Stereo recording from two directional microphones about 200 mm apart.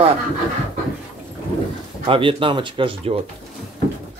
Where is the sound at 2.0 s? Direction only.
25° right (ahead or behind).